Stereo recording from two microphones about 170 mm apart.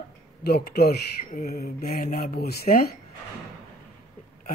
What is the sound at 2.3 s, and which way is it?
Speech, 65° left (ahead or behind).